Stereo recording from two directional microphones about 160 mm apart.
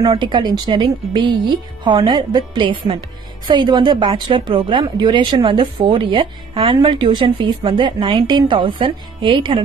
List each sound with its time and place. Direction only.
0.0 s a woman's voice: 25° right (ahead or behind)